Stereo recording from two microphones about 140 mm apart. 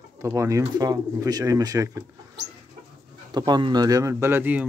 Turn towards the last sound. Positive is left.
turn(degrees=-10)  # may be behind; listen again after turning